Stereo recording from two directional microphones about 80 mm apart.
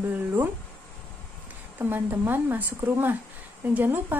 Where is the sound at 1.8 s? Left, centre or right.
Right.